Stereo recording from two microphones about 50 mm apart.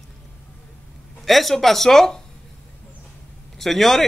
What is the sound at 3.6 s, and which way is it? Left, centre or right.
Speech, centre.